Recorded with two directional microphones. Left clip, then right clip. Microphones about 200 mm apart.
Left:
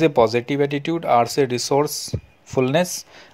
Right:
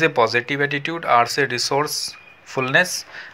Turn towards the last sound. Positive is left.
turn(degrees=60)  # may be behind; listen again after turning